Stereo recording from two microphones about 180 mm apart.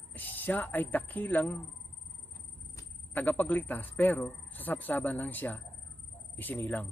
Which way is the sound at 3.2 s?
10° left (ahead or behind).